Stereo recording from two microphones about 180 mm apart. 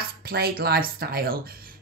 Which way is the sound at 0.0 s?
60° right (ahead or behind).